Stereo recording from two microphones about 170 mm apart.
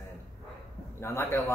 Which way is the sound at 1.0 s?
15° left (ahead or behind).